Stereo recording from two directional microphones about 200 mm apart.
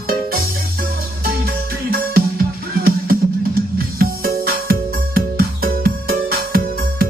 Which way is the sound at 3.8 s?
50° right (ahead or behind).